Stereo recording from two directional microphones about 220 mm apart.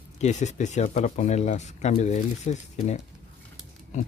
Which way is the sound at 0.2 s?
30° left (ahead or behind).